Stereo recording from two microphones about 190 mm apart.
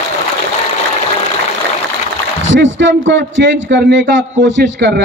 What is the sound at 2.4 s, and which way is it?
A man's voice, 85° right.